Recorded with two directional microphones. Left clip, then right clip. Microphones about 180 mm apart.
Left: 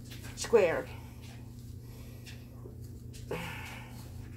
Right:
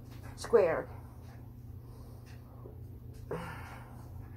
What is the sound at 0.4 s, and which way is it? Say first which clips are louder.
Speech: left 1 dB; 15° left (ahead or behind).